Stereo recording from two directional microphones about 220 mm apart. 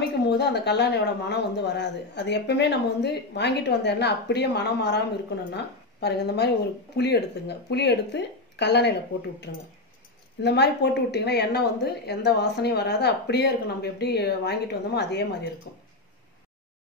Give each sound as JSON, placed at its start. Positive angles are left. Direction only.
{"t": 0.3, "sound": "speech", "side_deg": 50}